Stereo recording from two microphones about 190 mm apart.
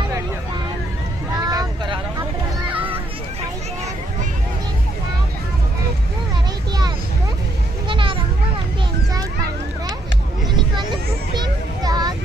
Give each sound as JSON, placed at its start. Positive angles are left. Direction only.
{"t": 1.3, "sound": "vehicle", "side_deg": -20}
{"t": 7.9, "sound": "children playing", "side_deg": -25}
{"t": 11.3, "sound": "a sound", "side_deg": -20}